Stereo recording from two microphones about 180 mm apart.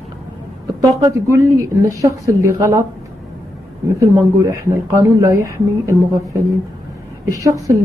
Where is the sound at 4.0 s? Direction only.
20° right (ahead or behind).